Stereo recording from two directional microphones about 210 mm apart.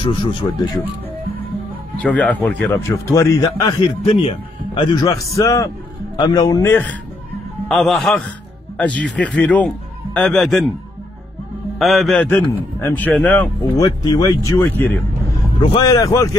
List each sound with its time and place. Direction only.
0.0 s a man's voice: 25° left (ahead or behind)
2.0 s a man's voice: 5° left (ahead or behind)
11.8 s a man's voice: centre (ahead or behind)
15.6 s a man's voice: 20° left (ahead or behind)